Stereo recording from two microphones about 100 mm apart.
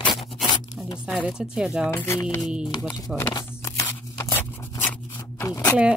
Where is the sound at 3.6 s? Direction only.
30° left (ahead or behind).